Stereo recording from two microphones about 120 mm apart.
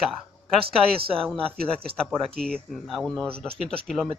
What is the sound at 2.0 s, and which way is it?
Speech, 5° left (ahead or behind).